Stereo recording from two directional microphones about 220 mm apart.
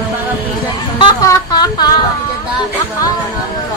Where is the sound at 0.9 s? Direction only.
20° left (ahead or behind).